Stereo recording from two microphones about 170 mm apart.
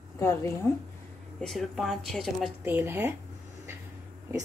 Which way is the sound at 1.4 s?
Centre (ahead or behind).